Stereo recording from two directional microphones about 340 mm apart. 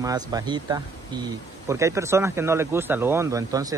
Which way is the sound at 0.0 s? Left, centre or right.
Centre.